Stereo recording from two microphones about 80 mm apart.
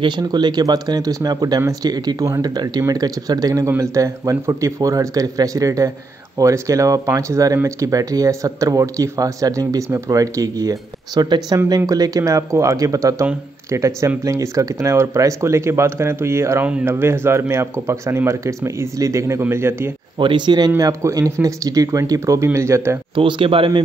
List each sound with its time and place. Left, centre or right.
0.2 s speech: right
3.6 s speech: right
11.2 s speech: right
20.2 s speech: right
20.7 s speech: right
23.1 s a man's voice: right